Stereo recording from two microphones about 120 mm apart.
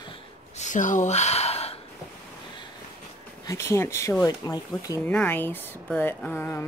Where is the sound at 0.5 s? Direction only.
90° left; by 1.7 s 60° left (ahead or behind).